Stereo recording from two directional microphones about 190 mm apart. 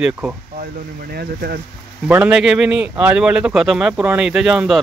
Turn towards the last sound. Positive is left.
turn(degrees=0)  # may be behind; listen again after turning